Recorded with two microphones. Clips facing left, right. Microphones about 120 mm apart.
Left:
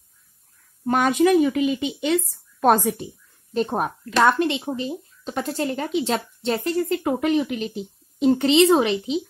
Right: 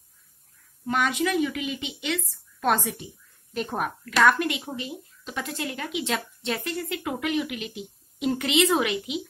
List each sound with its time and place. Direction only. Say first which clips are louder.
0.8 s speech: left 7 dB; 40° left (ahead or behind)
3.5 s speech: left 6 dB; 30° left (ahead or behind)